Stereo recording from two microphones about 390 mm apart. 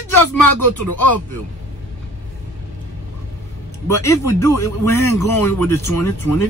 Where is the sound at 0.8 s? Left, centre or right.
Left.